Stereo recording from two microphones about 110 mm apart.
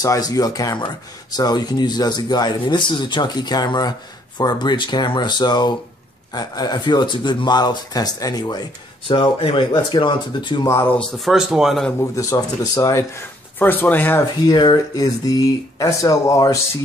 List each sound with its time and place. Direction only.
0.0 s speech: 35° left (ahead or behind)
9.1 s speech: 50° left (ahead or behind)
10.7 s speech: 20° left (ahead or behind)
11.0 s speech: centre (ahead or behind)
12.0 s speech: 30° left (ahead or behind)
13.6 s speech: 15° left (ahead or behind)
14.2 s speech: 40° left (ahead or behind)